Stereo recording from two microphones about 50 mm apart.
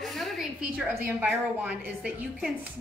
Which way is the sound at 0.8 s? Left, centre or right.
Right.